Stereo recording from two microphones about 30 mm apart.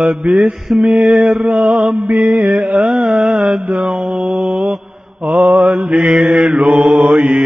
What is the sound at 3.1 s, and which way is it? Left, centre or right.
Mantra, right.